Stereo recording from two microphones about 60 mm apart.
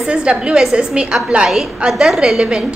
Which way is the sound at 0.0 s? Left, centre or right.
Centre.